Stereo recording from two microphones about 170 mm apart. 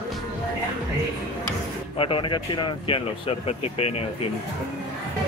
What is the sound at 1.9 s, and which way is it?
Speech, 30° left (ahead or behind).